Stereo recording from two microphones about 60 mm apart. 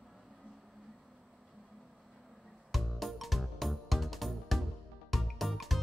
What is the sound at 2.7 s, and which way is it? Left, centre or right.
Music, centre.